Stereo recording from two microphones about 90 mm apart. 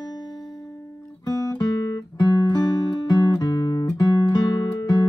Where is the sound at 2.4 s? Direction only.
50° left (ahead or behind).